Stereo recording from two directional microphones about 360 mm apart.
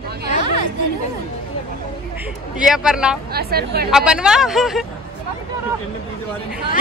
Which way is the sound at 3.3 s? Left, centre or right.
Right.